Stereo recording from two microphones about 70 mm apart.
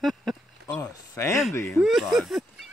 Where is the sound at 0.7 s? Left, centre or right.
Left.